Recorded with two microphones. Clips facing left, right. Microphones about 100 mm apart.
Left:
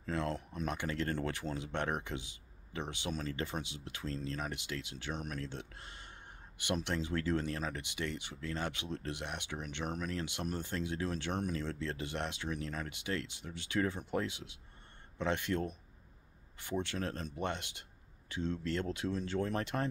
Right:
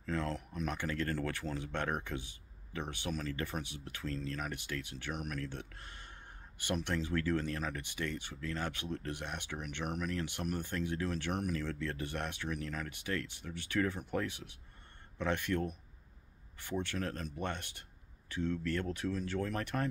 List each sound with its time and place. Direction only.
0.0 s speech: 20° left (ahead or behind)